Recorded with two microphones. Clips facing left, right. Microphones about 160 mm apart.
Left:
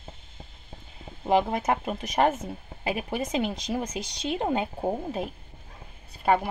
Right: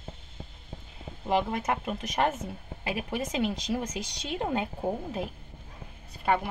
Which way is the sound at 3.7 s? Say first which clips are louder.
Left 1 dB; 20° left (ahead or behind).